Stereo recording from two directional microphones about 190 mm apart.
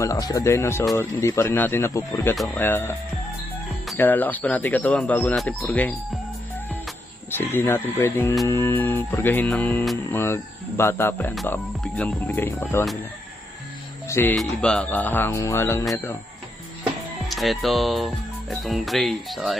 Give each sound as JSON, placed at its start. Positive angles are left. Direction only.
{"t": 0.0, "sound": "speech", "side_deg": 20}
{"t": 7.5, "sound": "speech", "side_deg": 10}
{"t": 14.0, "sound": "music", "side_deg": 15}
{"t": 14.3, "sound": "speech", "side_deg": 0}
{"t": 17.3, "sound": "speech", "side_deg": 0}